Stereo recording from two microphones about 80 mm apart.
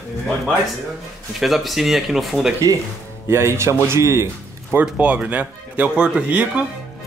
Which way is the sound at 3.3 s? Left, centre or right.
Right.